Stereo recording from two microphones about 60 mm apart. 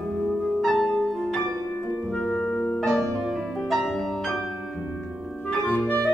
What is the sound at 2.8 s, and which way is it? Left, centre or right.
Music, centre.